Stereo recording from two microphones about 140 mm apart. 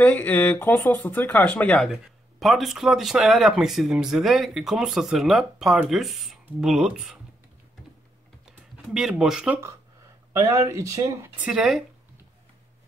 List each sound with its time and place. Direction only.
0.0 s speech: 10° left (ahead or behind); by 7.2 s 5° right (ahead or behind)
8.9 s speech: 5° right (ahead or behind)
10.3 s speech: 20° right (ahead or behind)
11.4 s speech: 5° right (ahead or behind)